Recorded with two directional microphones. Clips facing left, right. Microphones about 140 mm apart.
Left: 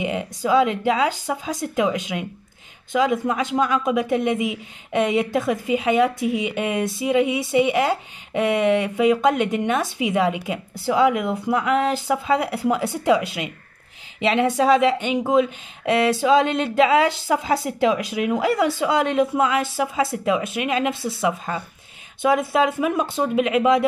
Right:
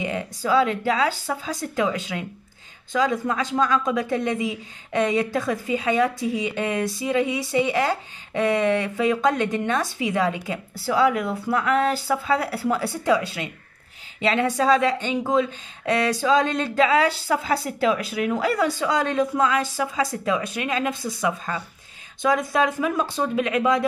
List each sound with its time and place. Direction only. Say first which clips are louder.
0.0 s speech: left 3 dB; 20° left (ahead or behind)